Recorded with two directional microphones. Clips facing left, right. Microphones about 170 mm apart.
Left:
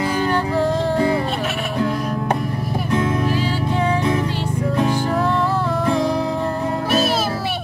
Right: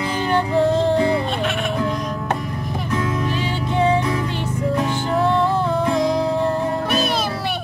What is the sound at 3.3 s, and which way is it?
Music, 20° right (ahead or behind).